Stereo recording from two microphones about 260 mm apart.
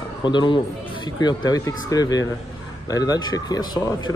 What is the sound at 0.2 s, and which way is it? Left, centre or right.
Speech, centre.